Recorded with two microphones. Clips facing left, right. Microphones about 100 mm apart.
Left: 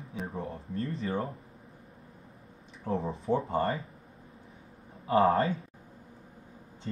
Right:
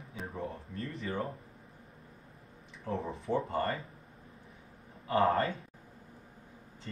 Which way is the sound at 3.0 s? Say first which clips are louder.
Left 4 dB; 30° left (ahead or behind).